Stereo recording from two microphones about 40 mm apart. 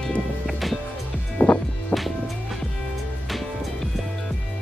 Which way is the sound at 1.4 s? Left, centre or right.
Left.